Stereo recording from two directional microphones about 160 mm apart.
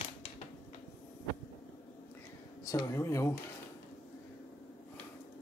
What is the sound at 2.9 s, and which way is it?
Speech, 15° left (ahead or behind).